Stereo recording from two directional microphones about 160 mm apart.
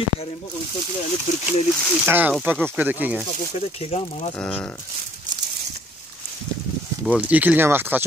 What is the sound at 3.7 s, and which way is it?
Speech, 40° left (ahead or behind).